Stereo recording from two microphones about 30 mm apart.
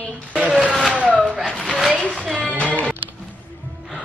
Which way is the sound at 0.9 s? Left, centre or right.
Right.